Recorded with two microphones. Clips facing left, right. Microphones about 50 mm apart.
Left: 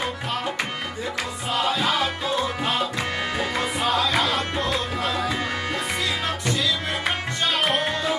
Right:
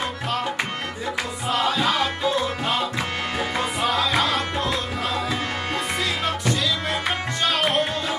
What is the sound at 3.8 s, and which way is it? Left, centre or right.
Music, centre.